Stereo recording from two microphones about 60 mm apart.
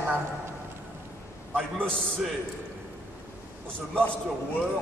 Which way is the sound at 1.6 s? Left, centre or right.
Centre.